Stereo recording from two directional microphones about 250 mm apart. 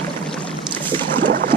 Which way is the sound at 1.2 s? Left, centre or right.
Right.